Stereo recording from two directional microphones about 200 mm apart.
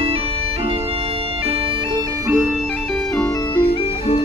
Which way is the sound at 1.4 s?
30° right (ahead or behind).